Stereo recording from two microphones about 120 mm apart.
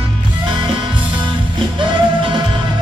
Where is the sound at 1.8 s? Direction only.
40° right (ahead or behind).